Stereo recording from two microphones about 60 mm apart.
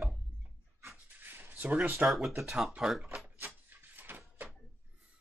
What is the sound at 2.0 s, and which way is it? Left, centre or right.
Speech, centre.